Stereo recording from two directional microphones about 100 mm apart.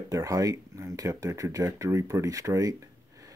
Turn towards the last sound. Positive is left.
turn(degrees=-35)  # may be behind; listen again after turning